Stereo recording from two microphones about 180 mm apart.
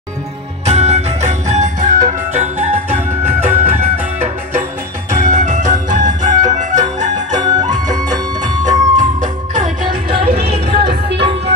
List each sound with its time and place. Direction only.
0.7 s music: 40° right (ahead or behind)
7.3 s music: 25° right (ahead or behind)
8.6 s music: 45° right (ahead or behind)
9.8 s music: 30° right (ahead or behind)
10.9 s music: 70° right (ahead or behind)